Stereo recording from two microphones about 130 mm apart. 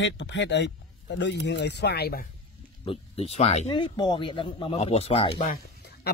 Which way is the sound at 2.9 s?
50° left (ahead or behind).